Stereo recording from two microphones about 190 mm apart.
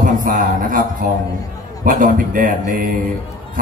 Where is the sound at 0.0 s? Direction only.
45° right (ahead or behind).